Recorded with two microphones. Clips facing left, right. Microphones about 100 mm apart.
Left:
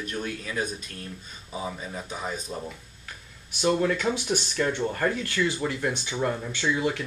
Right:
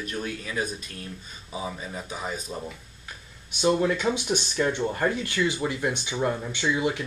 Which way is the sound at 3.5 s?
15° right (ahead or behind).